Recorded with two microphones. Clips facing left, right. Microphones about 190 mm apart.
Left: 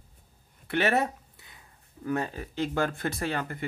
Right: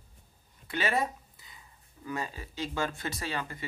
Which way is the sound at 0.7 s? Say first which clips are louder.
Left 5 dB; 65° left (ahead or behind).